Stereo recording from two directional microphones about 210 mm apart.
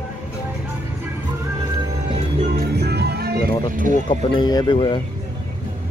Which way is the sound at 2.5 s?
50° right (ahead or behind).